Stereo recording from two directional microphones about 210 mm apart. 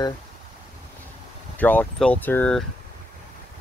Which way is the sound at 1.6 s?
10° left (ahead or behind).